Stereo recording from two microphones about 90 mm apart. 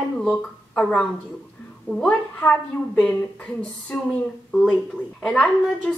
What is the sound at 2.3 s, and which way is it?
Speech, 15° left (ahead or behind).